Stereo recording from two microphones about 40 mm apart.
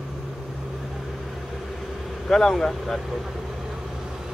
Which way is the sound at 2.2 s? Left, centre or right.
Centre.